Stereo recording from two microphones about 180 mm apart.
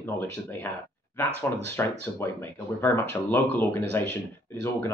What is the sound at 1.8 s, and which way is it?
Speech, 10° left (ahead or behind).